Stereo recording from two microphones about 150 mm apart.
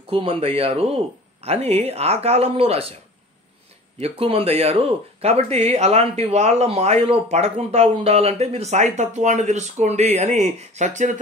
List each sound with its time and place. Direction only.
0.1 s speech: 40° right (ahead or behind)
4.0 s a man's voice: 40° right (ahead or behind)